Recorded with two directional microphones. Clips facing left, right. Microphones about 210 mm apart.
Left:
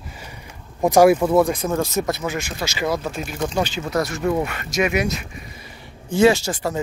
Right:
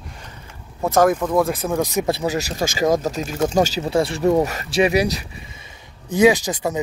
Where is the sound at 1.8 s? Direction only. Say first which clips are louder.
Right 1 dB; 15° right (ahead or behind).